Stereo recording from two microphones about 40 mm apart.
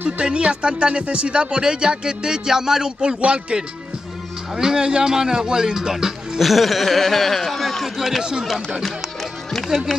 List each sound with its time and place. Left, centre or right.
0.2 s speech: right
3.2 s speech: right
4.6 s speech: centre
6.4 s speech: centre
8.2 s speech: centre
9.7 s speech: centre